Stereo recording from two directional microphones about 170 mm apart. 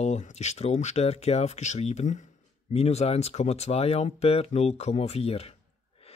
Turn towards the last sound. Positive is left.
turn(degrees=35)  # may be behind; listen again after turning